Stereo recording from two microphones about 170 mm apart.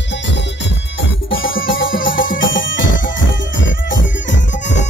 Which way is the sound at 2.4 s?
90° left.